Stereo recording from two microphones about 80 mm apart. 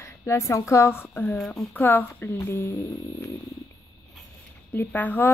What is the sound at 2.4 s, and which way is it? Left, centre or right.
Speech, left.